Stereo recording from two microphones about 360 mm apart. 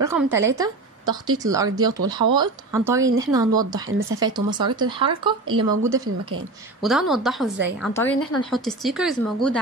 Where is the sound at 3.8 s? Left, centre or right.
Right.